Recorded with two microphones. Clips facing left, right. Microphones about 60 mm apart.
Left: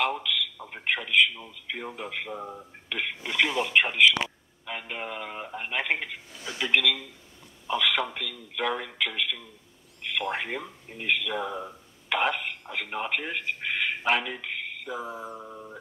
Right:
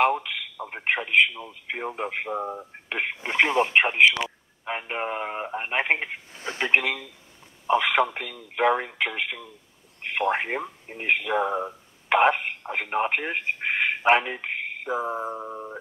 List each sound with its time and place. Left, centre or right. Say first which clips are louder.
0.1 s speech: right 2 dB; right